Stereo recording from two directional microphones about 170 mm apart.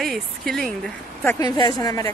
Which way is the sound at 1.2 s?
15° left (ahead or behind).